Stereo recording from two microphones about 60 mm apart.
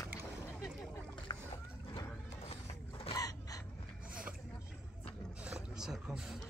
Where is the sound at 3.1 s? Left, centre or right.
Left.